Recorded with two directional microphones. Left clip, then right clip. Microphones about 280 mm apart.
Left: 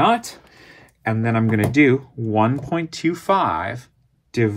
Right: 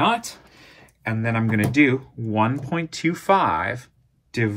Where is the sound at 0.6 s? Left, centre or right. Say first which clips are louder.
Left 4 dB; left.